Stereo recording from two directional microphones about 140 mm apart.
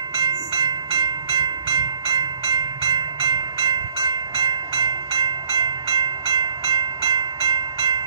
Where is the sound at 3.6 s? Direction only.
25° right (ahead or behind).